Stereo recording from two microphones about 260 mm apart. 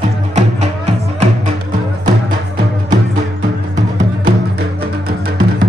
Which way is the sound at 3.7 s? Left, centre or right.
Right.